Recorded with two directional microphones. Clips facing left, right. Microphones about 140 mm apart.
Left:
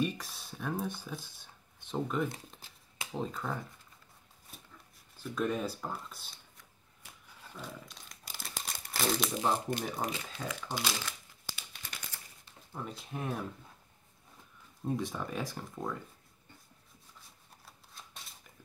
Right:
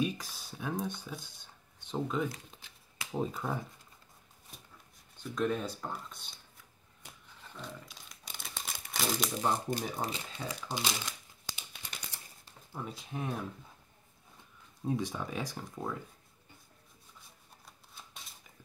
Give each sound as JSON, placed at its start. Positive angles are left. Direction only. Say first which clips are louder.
{"t": 0.0, "sound": "speech", "louder": "even", "side_deg": 0}
{"t": 2.3, "sound": "a sound", "louder": "left 2 dB", "side_deg": 30}
{"t": 3.1, "sound": "speech", "louder": "right 2 dB", "side_deg": -10}
{"t": 5.1, "sound": "speech", "louder": "right 1 dB", "side_deg": 5}
{"t": 7.4, "sound": "crumpling", "louder": "even", "side_deg": 5}
{"t": 10.7, "sound": "crumpling", "louder": "right 1 dB", "side_deg": -20}
{"t": 12.7, "sound": "speech", "louder": "even", "side_deg": 0}
{"t": 14.9, "sound": "speech", "louder": "right 1 dB", "side_deg": 0}
{"t": 17.6, "sound": "typewriter", "louder": "even", "side_deg": 0}